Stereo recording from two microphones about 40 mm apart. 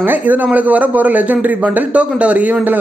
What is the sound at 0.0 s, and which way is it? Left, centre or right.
Speech, right.